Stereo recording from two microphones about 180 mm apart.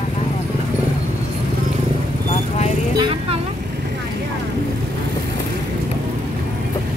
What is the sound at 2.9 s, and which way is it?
Speech, 30° right (ahead or behind).